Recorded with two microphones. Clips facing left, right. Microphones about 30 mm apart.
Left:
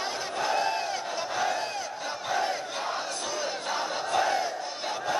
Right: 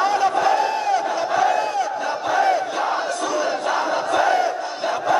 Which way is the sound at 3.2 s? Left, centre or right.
Centre.